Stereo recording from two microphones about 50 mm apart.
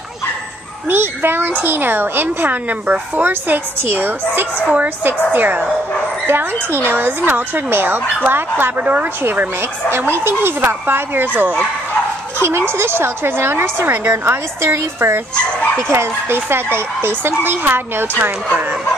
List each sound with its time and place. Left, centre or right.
0.8 s a child's voice: right
8.7 s a woman's voice: right
9.2 s a child's voice: right
12.4 s a child's voice: right
15.3 s speech: left
15.9 s a child's voice: right
18.2 s a woman's voice: right